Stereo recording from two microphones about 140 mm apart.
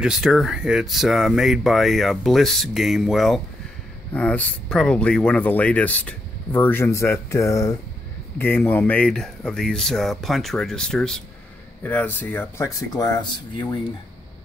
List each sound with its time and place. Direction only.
0.0 s speech: 5° right (ahead or behind); by 13.7 s 30° left (ahead or behind)